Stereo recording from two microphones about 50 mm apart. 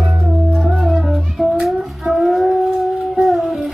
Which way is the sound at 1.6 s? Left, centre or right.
Centre.